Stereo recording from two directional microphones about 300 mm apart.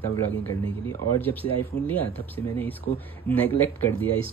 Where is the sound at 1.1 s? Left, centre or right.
Centre.